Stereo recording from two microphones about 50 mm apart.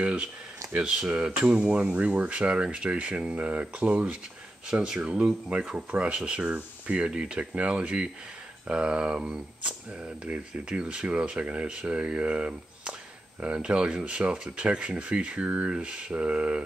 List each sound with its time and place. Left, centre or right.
0.0 s speech: right
4.6 s speech: centre